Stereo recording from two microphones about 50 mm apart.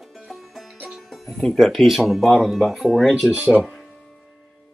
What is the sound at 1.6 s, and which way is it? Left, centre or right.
Speech, centre.